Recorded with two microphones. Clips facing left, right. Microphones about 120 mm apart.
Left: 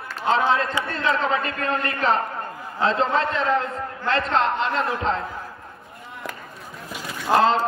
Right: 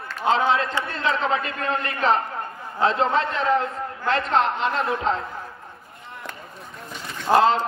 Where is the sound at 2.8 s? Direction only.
Centre (ahead or behind).